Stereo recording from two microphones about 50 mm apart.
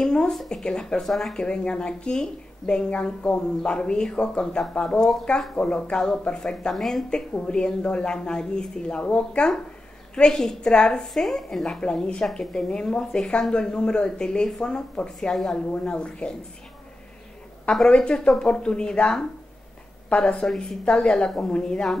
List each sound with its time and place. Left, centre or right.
0.0 s a sound: centre
0.5 s a woman's voice: centre
1.3 s a woman's voice: centre
6.7 s speech: centre
7.1 s a woman's voice: centre
11.8 s a woman's voice: centre
15.1 s a woman's voice: centre
17.8 s a woman's voice: centre